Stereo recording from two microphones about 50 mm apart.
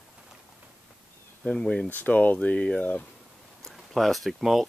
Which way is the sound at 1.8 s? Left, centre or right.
Left.